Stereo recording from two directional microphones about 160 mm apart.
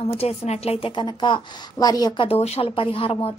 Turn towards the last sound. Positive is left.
turn(degrees=35)  # may be behind; listen again after turning